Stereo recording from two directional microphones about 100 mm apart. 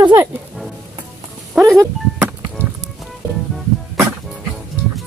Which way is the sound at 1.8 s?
25° right (ahead or behind).